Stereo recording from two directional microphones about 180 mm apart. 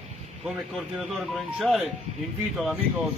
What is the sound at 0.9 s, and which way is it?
Speech, centre (ahead or behind).